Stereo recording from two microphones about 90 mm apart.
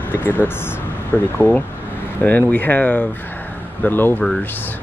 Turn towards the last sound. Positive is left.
turn(degrees=20)  # may be behind; listen again after turning